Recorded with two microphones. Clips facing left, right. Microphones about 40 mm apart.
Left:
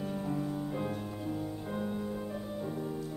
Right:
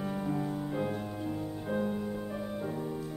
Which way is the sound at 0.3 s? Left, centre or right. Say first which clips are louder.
Right 1 dB; centre.